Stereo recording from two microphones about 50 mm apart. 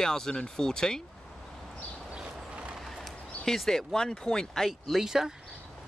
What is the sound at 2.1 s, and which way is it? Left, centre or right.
Vehicle, right.